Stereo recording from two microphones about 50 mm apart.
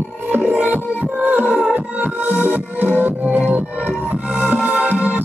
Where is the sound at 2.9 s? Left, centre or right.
Right.